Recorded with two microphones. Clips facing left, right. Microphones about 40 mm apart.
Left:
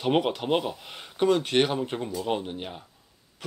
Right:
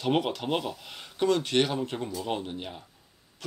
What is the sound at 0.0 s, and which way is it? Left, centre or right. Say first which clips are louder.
Speech: left 2 dB; centre.